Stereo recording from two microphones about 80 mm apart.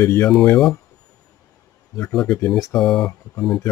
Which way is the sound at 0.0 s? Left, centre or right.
Left.